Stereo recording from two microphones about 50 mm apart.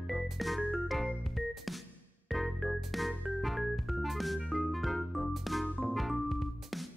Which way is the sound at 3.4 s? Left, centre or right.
Centre.